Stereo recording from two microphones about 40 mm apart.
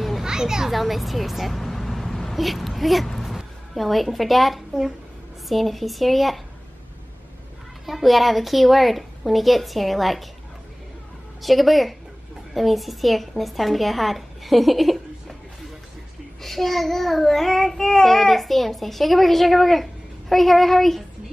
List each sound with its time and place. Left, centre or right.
0.2 s children playing: centre
0.7 s child singing: centre
1.6 s vehicle: centre
2.3 s a woman's voice: centre
5.5 s child singing: centre
7.8 s child singing: centre
11.4 s child singing: centre
16.4 s child singing: centre